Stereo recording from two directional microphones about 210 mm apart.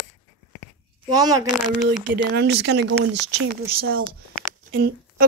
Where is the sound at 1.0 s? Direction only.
20° right (ahead or behind).